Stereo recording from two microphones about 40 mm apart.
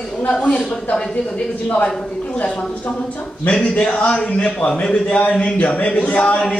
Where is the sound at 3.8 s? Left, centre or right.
Left.